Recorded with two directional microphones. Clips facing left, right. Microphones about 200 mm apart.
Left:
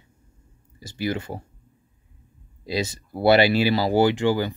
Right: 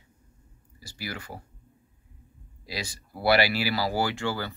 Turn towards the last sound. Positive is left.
turn(degrees=15)  # may be behind; listen again after turning